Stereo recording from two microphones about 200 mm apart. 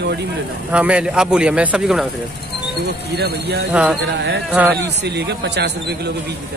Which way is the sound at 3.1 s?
55° right (ahead or behind).